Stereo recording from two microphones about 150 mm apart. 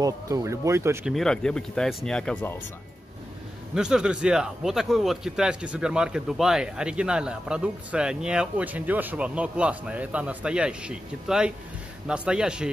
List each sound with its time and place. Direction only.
0.0 s speech: 20° right (ahead or behind)
1.0 s a man's voice: 5° left (ahead or behind)
3.7 s a man's voice: 5° right (ahead or behind)